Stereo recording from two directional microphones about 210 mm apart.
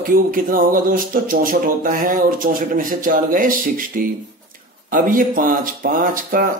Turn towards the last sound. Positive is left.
turn(degrees=-40)  # may be behind; listen again after turning